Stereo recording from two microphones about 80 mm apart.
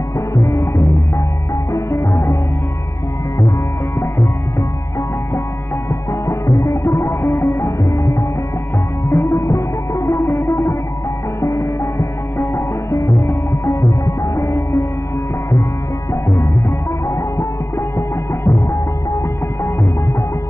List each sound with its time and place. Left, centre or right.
0.3 s music: left
4.0 s music: left
6.2 s music: left
16.1 s music: left